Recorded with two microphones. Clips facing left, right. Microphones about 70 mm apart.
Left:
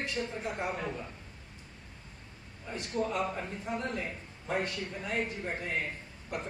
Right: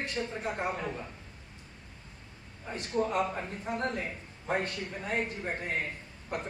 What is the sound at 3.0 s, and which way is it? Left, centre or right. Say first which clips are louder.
Speech: right 3 dB; right.